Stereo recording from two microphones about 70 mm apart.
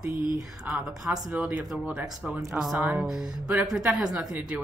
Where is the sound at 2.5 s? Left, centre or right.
Right.